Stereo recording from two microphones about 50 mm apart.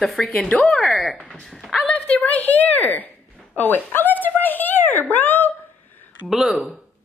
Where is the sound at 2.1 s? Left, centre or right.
Left.